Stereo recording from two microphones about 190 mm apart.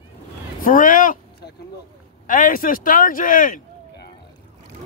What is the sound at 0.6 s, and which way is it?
Speech, 45° left (ahead or behind).